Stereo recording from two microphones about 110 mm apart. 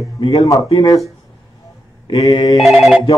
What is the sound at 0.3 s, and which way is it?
Speech, 30° left (ahead or behind).